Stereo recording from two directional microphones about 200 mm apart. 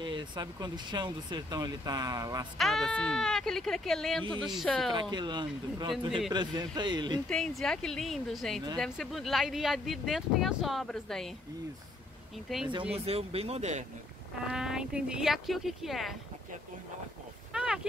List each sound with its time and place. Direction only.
0.0 s speech: 20° right (ahead or behind)
2.5 s speech: centre (ahead or behind)
4.2 s speech: 25° right (ahead or behind)
4.6 s speech: centre (ahead or behind)
5.1 s speech: 20° right (ahead or behind)
7.2 s speech: 5° left (ahead or behind)
12.4 s speech: centre (ahead or behind)
12.9 s speech: 30° right (ahead or behind)
14.5 s speech: 5° right (ahead or behind)
17.5 s a sound: 5° right (ahead or behind)